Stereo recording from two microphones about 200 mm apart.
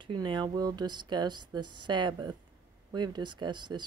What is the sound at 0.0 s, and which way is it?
Speech, 25° right (ahead or behind).